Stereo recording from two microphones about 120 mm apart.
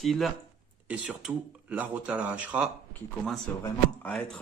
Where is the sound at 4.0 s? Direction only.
10° left (ahead or behind).